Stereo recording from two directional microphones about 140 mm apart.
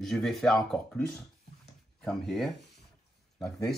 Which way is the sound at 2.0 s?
Centre (ahead or behind).